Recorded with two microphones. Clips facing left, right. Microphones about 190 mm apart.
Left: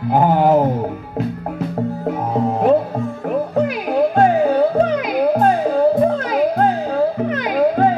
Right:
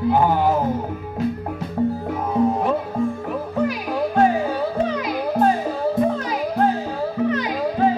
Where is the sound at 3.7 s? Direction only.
55° left (ahead or behind).